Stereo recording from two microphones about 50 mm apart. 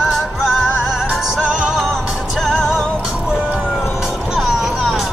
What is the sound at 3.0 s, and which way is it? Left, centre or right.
Music, centre.